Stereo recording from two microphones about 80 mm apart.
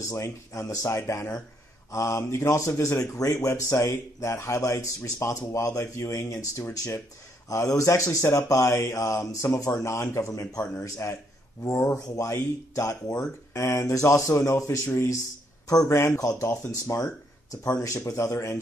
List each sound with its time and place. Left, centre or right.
0.1 s speech: left